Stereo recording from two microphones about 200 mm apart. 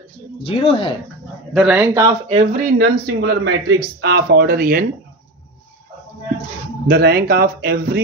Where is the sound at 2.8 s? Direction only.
55° right (ahead or behind).